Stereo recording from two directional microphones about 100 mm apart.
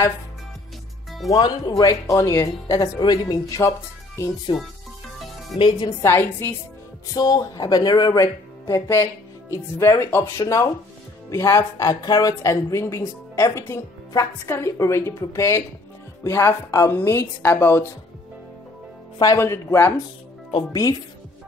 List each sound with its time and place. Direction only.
1.3 s speech: 40° left (ahead or behind)
4.5 s a woman's voice: 55° left (ahead or behind)
6.0 s a woman's voice: 25° left (ahead or behind)
7.2 s a woman's voice: 40° left (ahead or behind); by 17.9 s 20° left (ahead or behind)
19.3 s a woman's voice: 25° left (ahead or behind)